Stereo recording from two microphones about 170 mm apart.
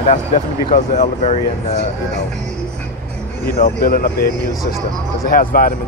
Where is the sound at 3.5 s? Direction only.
60° left (ahead or behind).